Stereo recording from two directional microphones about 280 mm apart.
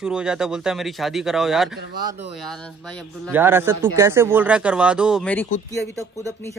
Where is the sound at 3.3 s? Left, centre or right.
Centre.